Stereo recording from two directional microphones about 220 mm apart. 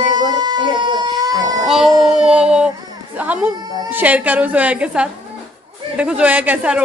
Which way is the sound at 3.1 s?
5° right (ahead or behind).